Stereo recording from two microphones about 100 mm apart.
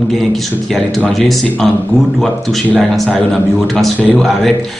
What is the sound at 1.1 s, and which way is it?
Speech, 5° left (ahead or behind).